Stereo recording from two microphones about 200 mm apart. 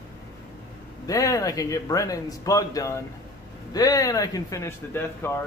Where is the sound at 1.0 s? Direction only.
15° left (ahead or behind).